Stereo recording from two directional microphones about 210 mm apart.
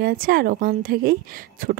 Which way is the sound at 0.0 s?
45° right (ahead or behind).